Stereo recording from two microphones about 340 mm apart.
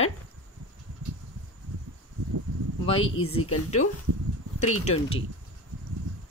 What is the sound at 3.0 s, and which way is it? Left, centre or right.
Speech, left.